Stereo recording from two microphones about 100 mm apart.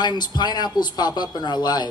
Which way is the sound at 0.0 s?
45° left (ahead or behind).